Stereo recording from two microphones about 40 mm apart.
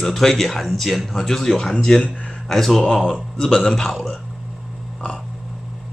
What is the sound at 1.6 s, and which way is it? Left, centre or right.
A man's voice, centre.